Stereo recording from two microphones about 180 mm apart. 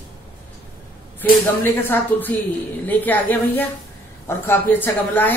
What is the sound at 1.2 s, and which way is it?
A woman's voice, 10° left (ahead or behind).